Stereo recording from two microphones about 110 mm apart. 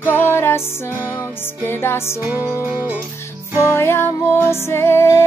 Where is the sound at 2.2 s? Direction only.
15° right (ahead or behind).